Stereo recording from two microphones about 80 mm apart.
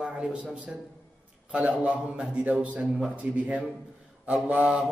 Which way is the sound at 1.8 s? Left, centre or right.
Centre.